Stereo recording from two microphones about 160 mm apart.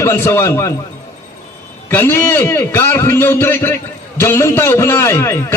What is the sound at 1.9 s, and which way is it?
A man's voice, 15° left (ahead or behind).